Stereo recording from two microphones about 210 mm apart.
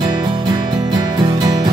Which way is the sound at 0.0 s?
20° right (ahead or behind).